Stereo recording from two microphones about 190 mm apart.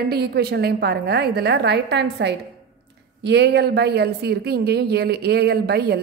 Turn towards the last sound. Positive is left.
turn(degrees=-60)  # may be behind; listen again after turning